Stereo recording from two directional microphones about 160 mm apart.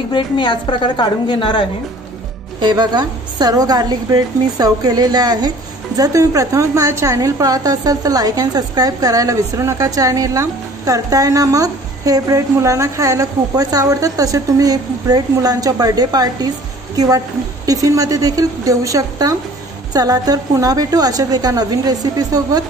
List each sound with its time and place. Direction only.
0.1 s a woman's voice: 30° left (ahead or behind)
2.6 s a woman's voice: 30° right (ahead or behind)